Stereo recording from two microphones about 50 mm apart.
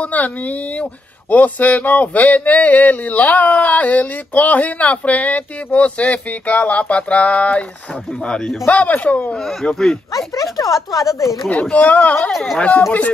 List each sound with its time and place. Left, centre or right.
0.0 s speech: left
8.6 s speech: left
9.4 s speech: centre
10.1 s speech: left
11.7 s speech: left
12.3 s speech: centre